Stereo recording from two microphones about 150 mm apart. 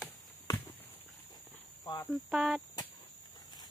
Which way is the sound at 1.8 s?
25° left (ahead or behind).